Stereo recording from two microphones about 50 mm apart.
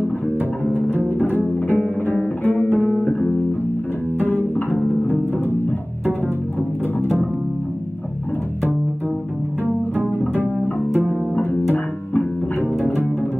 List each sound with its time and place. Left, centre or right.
0.7 s music: left
4.2 s music: left
10.3 s music: right
11.3 s music: left